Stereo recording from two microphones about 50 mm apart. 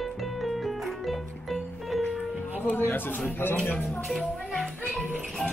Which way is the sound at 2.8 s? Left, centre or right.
Left.